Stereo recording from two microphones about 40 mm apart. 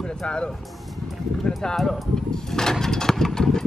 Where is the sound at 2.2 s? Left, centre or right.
Centre.